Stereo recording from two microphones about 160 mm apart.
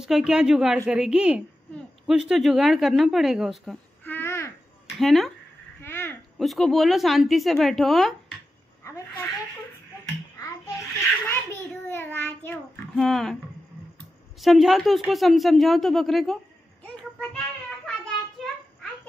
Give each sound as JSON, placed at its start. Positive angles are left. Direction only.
{"t": 0.0, "sound": "a woman's voice", "side_deg": -5}
{"t": 4.0, "sound": "babbling", "side_deg": 15}
{"t": 4.9, "sound": "speech", "side_deg": 0}
{"t": 5.8, "sound": "a sound", "side_deg": 15}
{"t": 6.3, "sound": "a woman's voice", "side_deg": 0}
{"t": 8.8, "sound": "a sound", "side_deg": 15}
{"t": 11.2, "sound": "hands", "side_deg": 15}
{"t": 12.9, "sound": "a woman's voice", "side_deg": 0}
{"t": 14.4, "sound": "a woman's voice", "side_deg": 0}
{"t": 16.8, "sound": "a sound", "side_deg": 5}